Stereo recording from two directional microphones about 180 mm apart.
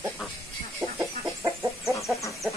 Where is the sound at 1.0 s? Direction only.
15° right (ahead or behind).